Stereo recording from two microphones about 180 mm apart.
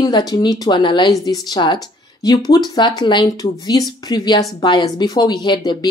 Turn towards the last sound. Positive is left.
turn(degrees=25)  # may be behind; listen again after turning